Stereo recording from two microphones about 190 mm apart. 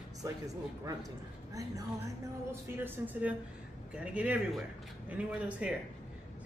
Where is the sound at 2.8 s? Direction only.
5° right (ahead or behind).